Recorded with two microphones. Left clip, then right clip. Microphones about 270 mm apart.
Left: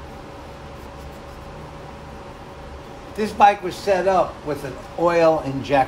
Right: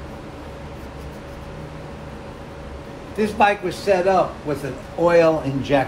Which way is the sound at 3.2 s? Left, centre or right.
Left.